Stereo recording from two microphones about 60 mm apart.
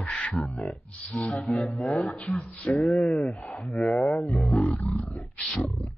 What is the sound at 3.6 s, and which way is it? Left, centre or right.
Speech, centre.